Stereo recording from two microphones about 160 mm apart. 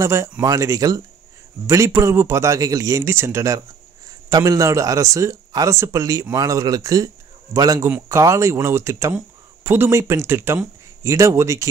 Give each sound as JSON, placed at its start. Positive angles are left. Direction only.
{"t": 0.0, "sound": "a man's voice", "side_deg": -20}